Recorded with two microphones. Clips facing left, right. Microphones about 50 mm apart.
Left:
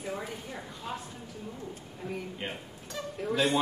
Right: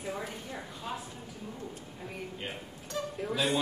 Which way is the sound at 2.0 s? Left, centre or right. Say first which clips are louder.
Left 7 dB; centre.